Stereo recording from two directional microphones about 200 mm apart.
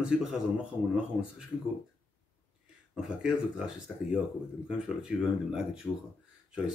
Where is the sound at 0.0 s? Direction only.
5° right (ahead or behind).